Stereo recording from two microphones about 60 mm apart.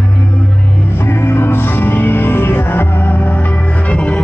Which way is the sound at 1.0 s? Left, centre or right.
Left.